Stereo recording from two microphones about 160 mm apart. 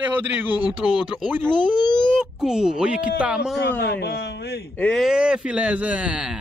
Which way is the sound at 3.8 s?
90° left.